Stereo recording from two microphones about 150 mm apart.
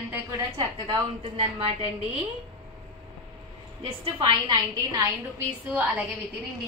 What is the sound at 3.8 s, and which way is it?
A woman's voice, 35° right (ahead or behind).